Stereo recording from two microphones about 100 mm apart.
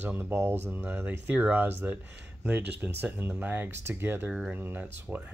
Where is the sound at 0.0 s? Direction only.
15° right (ahead or behind).